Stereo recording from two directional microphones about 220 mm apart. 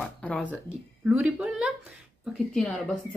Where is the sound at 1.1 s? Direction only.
5° right (ahead or behind).